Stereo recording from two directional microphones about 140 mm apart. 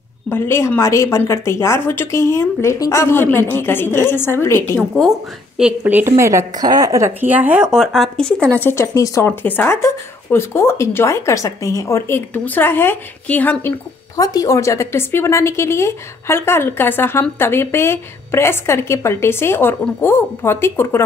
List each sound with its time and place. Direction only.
0.3 s speech: 15° left (ahead or behind)
4.7 s speech: centre (ahead or behind)
5.6 s a woman's voice: 10° right (ahead or behind)
7.7 s speech: centre (ahead or behind)
8.5 s speech: 15° left (ahead or behind)